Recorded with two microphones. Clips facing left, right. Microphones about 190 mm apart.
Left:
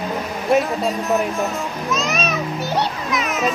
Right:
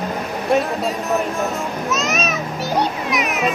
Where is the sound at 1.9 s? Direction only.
Centre (ahead or behind).